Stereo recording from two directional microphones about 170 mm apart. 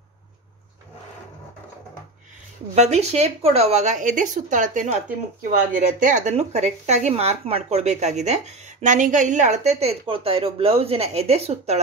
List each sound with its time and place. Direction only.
2.7 s speech: 40° right (ahead or behind)